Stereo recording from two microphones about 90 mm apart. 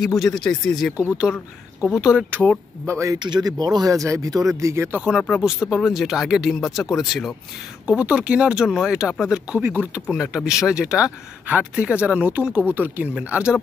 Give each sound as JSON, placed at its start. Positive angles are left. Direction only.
{"t": 0.0, "sound": "speech", "side_deg": 0}
{"t": 1.8, "sound": "speech", "side_deg": -10}
{"t": 2.4, "sound": "speech", "side_deg": 5}
{"t": 2.9, "sound": "speech", "side_deg": -35}
{"t": 3.2, "sound": "speech", "side_deg": -50}
{"t": 5.4, "sound": "speech", "side_deg": -5}
{"t": 7.8, "sound": "speech", "side_deg": -10}
{"t": 9.6, "sound": "speech", "side_deg": -20}
{"t": 10.1, "sound": "speech", "side_deg": -10}